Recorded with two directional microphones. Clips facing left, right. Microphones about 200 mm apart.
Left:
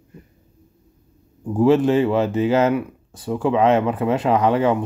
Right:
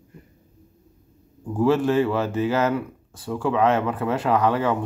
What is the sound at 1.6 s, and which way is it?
Speech, 20° left (ahead or behind).